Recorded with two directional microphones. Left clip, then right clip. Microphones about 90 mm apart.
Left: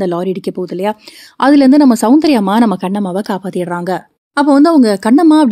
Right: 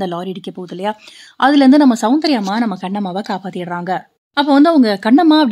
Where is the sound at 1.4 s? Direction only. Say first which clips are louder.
Left 2 dB; 50° left (ahead or behind).